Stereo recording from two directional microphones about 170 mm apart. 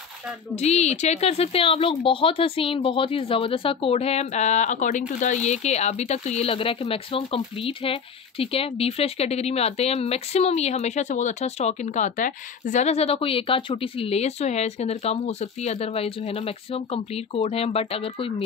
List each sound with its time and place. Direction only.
0.6 s speech: 40° left (ahead or behind)